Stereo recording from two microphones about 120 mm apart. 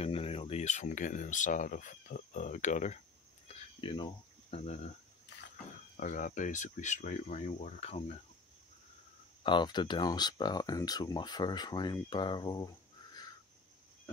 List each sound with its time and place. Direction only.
0.0 s speech: 55° left (ahead or behind); by 3.0 s 85° left
3.4 s a sound: 60° left (ahead or behind)
4.5 s speech: 65° left (ahead or behind)
5.9 s speech: 90° left; by 8.0 s 65° left (ahead or behind)
9.4 s speech: 40° left (ahead or behind)